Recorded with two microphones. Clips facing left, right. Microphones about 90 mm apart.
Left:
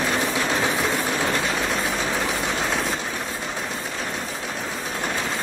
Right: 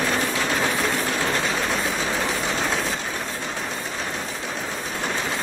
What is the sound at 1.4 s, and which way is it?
Train, centre (ahead or behind).